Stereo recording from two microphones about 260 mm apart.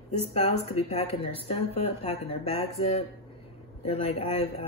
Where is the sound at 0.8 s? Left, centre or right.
Left.